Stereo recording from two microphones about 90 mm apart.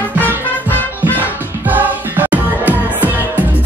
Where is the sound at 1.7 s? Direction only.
20° right (ahead or behind).